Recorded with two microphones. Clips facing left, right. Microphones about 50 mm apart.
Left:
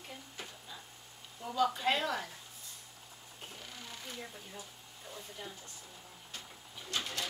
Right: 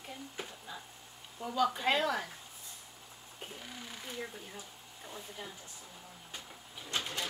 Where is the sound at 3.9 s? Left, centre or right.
Centre.